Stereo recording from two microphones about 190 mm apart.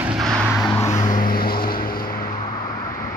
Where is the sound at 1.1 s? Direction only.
50° left (ahead or behind).